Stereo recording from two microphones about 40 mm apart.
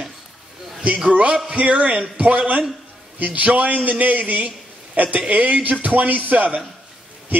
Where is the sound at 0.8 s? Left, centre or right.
Right.